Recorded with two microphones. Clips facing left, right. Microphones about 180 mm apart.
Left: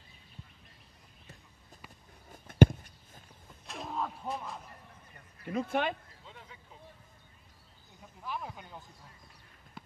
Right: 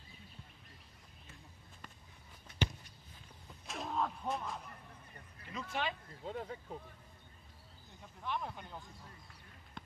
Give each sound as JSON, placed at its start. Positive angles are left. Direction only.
{"t": 2.3, "sound": "a sound", "side_deg": 50}
{"t": 3.6, "sound": "mechanisms", "side_deg": 0}
{"t": 5.4, "sound": "speech", "side_deg": 55}
{"t": 6.2, "sound": "speech", "side_deg": -45}
{"t": 8.2, "sound": "speech", "side_deg": 5}
{"t": 9.8, "sound": "a sound", "side_deg": 5}